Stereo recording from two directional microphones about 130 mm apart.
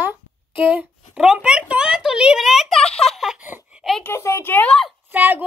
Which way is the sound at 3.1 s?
5° right (ahead or behind).